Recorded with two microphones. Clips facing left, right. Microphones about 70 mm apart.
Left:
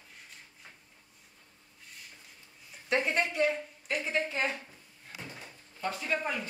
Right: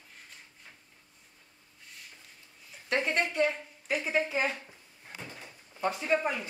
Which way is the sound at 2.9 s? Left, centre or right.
Centre.